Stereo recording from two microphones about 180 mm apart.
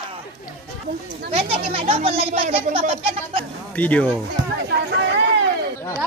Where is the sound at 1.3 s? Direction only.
35° right (ahead or behind).